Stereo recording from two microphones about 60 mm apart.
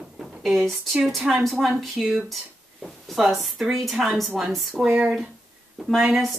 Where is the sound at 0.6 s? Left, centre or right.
Centre.